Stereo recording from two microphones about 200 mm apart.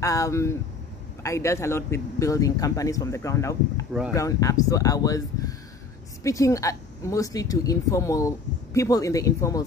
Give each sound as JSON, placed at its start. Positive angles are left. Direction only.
{"t": 0.0, "sound": "speech", "side_deg": 15}